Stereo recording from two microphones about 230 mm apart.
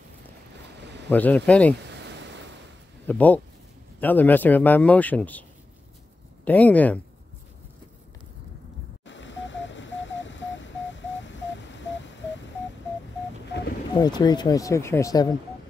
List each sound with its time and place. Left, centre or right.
1.0 s speech: centre
1.8 s a sound: right
3.1 s speech: centre
6.4 s speech: centre
9.0 s radio: left
13.9 s speech: centre